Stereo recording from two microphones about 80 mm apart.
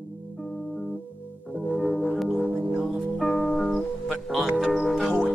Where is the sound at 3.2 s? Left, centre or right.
Centre.